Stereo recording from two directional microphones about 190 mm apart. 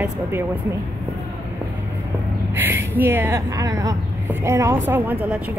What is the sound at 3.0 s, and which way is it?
A woman's voice, 10° right (ahead or behind).